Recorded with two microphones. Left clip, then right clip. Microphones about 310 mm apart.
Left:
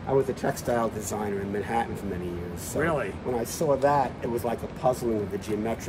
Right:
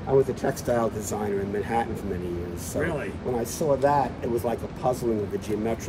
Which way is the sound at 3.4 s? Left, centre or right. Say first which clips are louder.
Right 1 dB; centre.